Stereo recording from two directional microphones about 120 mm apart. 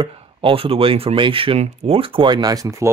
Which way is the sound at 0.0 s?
50° right (ahead or behind).